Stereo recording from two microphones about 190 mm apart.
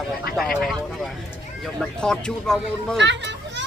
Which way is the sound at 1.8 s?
5° left (ahead or behind).